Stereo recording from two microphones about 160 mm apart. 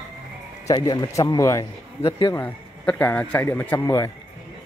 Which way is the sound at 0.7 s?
25° left (ahead or behind).